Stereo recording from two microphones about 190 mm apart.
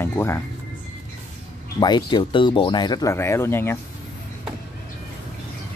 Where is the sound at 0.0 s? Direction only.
10° left (ahead or behind).